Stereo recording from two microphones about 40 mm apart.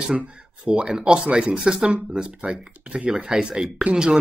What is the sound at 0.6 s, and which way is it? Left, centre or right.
Speech, right.